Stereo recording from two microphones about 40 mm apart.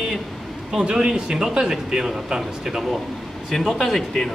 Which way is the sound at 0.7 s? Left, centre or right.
Right.